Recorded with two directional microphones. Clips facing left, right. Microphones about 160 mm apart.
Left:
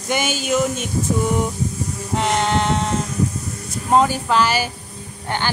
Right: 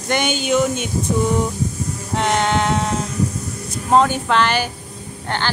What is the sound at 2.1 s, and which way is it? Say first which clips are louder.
Speech: right 1 dB; centre (ahead or behind).